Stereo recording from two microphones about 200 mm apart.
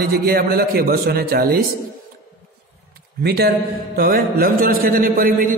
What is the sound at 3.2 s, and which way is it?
A man's voice, 50° right (ahead or behind).